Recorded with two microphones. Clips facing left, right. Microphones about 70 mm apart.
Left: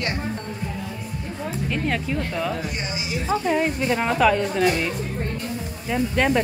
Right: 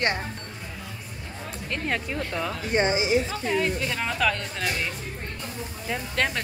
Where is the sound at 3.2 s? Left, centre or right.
Left.